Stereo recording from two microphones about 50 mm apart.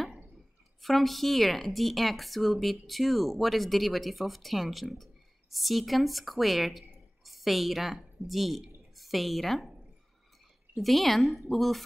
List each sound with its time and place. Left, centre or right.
0.8 s speech: centre
10.8 s speech: centre